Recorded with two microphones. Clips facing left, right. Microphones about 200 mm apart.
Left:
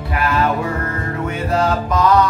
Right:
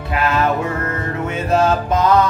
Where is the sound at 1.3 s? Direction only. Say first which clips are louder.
Right 3 dB; 25° right (ahead or behind).